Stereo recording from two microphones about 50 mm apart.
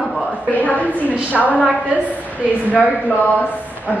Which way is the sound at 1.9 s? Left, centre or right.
Right.